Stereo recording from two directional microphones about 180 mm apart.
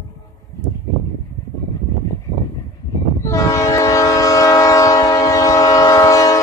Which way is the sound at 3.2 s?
15° left (ahead or behind).